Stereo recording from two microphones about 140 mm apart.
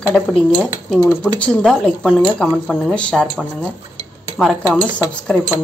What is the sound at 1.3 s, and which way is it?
A woman's voice, 10° left (ahead or behind).